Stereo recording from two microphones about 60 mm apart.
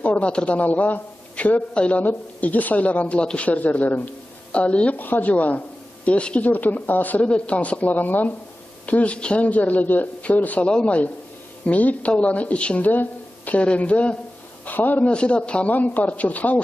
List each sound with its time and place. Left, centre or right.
0.0 s a man's voice: left
15.0 s speech: centre